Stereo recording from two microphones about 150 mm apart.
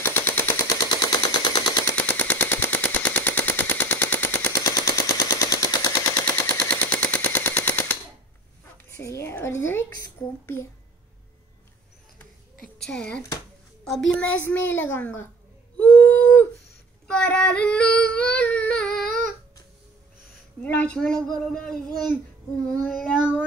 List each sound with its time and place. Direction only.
0.0 s machine gun: 15° left (ahead or behind)
0.8 s machine gun: 25° left (ahead or behind)
2.0 s machine gun: 10° left (ahead or behind)
6.1 s machine gun: 10° left (ahead or behind)
8.9 s a woman's voice: 20° left (ahead or behind)
12.8 s child singing: 5° left (ahead or behind)
13.8 s speech: centre (ahead or behind)
15.8 s a sound: 10° left (ahead or behind)
17.1 s child singing: 5° left (ahead or behind)
20.6 s speech: 10° left (ahead or behind)
22.8 s child singing: centre (ahead or behind)